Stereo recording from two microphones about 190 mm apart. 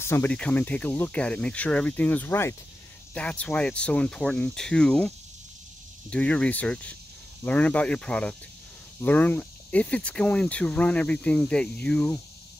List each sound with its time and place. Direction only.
0.0 s speech: 10° left (ahead or behind)